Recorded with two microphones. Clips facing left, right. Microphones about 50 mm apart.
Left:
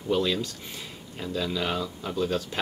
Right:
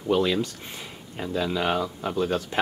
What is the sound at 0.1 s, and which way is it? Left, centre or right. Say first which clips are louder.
Speech: right 3 dB; right.